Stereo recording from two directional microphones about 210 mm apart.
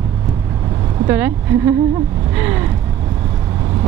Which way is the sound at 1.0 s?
10° right (ahead or behind).